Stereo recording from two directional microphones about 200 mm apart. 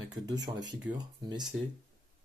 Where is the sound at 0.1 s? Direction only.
20° right (ahead or behind).